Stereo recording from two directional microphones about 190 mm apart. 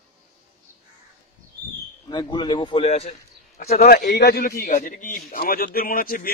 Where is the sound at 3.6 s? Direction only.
45° left (ahead or behind).